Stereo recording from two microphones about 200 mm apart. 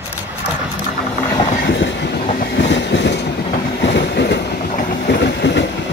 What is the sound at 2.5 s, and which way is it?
Train, 60° left (ahead or behind).